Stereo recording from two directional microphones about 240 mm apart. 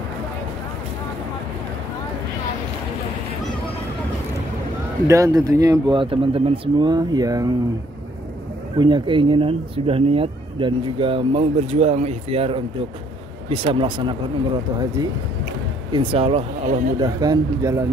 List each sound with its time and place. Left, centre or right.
5.0 s speech: centre
8.7 s speech: centre
15.9 s speech: centre
17.0 s speech: centre